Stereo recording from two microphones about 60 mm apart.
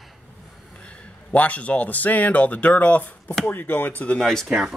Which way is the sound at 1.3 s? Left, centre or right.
Left.